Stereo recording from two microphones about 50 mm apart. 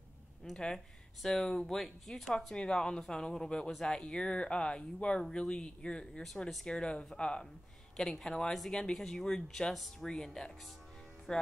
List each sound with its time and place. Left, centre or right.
0.4 s speech: centre